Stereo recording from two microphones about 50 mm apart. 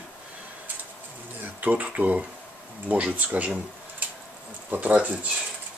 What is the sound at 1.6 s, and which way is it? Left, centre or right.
Speech, right.